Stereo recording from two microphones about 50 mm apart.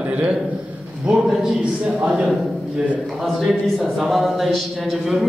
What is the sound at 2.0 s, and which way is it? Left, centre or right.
Speech, centre.